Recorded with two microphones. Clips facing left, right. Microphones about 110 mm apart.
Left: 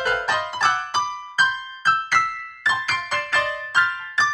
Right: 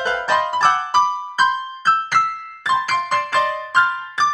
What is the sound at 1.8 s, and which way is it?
Music, 45° right (ahead or behind).